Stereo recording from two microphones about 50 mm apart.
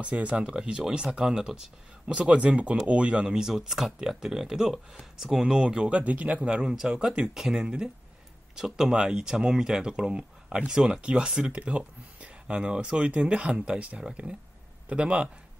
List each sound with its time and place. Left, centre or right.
0.2 s speech: right
6.7 s speech: centre